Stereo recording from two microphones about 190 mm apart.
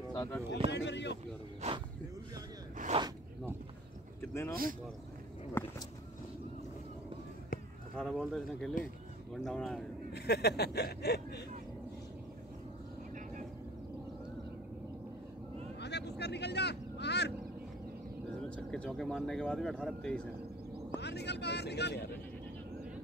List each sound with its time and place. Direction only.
0.1 s a sound: 15° left (ahead or behind)
0.7 s speech: 65° left (ahead or behind)
1.6 s speech: 35° right (ahead or behind)
2.9 s speech: 30° right (ahead or behind)
4.2 s speech: 15° left (ahead or behind)
5.6 s a sound: 10° left (ahead or behind)
7.9 s speech: 5° left (ahead or behind)
10.1 s speech: 60° left (ahead or behind)
15.8 s vehicle: 60° left (ahead or behind)
18.7 s speech: 5° left (ahead or behind)
21.0 s speech: 60° left (ahead or behind)